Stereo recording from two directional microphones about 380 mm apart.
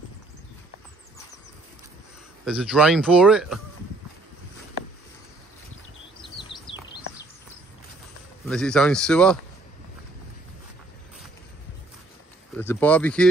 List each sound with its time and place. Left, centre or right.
2.4 s a man's voice: centre
8.5 s a man's voice: centre
12.5 s a man's voice: centre